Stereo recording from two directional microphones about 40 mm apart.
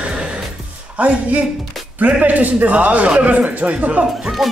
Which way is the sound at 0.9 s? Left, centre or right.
Right.